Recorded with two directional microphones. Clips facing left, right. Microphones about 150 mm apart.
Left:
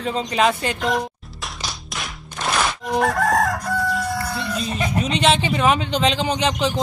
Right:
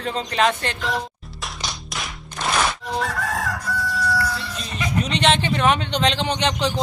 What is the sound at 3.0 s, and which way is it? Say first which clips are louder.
Chicken: left 8 dB; 45° left (ahead or behind).